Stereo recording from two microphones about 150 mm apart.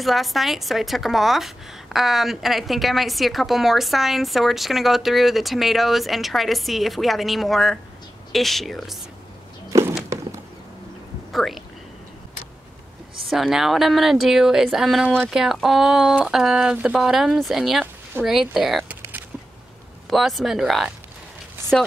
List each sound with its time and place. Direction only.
0.0 s a woman's voice: centre (ahead or behind)
9.7 s a sound: 20° right (ahead or behind)
11.3 s a woman's voice: centre (ahead or behind)
13.3 s a woman's voice: centre (ahead or behind)
20.1 s a woman's voice: centre (ahead or behind)